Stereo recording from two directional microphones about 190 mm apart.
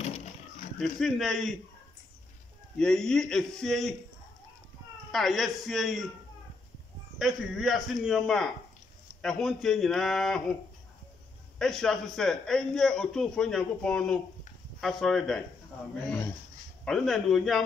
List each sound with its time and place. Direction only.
0.0 s a sound: 35° left (ahead or behind)
0.7 s a man's voice: centre (ahead or behind)
2.8 s a man's voice: 5° left (ahead or behind)
5.1 s a man's voice: centre (ahead or behind)
7.2 s a man's voice: centre (ahead or behind)
11.5 s a man's voice: 5° left (ahead or behind)
16.1 s speech: 15° left (ahead or behind)
16.8 s a man's voice: centre (ahead or behind)